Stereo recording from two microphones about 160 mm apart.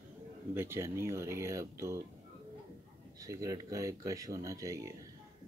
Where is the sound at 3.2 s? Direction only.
20° right (ahead or behind).